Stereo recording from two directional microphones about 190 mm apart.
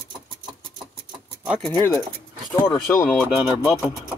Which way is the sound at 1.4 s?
5° right (ahead or behind).